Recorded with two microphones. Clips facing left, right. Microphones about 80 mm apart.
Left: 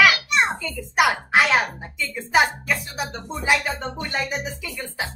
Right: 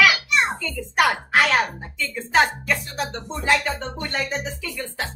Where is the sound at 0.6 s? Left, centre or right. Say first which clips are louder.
Even; centre.